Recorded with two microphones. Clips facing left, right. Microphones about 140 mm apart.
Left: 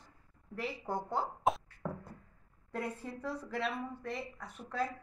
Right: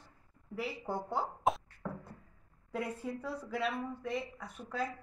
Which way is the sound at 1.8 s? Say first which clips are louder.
Left 1 dB; 15° left (ahead or behind).